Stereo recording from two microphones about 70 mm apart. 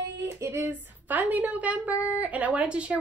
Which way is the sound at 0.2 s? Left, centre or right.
Right.